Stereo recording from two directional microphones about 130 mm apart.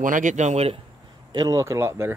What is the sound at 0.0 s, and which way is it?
Speech, 85° right.